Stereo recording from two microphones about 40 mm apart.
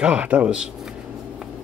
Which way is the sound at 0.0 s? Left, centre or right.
Right.